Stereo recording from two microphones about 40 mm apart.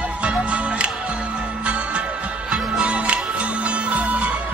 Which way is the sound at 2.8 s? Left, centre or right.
Right.